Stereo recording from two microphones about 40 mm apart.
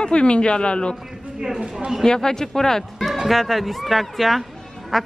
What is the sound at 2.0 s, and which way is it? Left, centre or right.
Speech, centre.